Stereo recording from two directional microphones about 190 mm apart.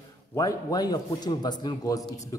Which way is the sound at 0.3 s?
20° left (ahead or behind).